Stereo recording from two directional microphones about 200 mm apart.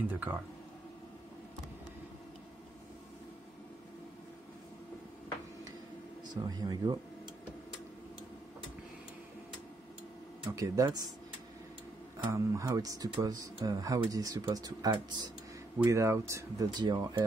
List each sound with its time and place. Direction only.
0.1 s speech: 10° right (ahead or behind)
6.3 s speech: 20° right (ahead or behind)
10.5 s speech: 15° right (ahead or behind)
12.2 s speech: 15° right (ahead or behind)